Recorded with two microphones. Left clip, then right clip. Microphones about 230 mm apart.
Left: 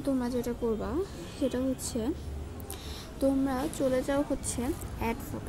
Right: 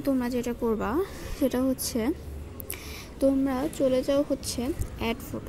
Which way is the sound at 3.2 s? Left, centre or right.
Centre.